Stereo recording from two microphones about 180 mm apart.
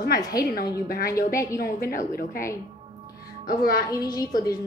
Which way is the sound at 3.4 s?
55° left (ahead or behind).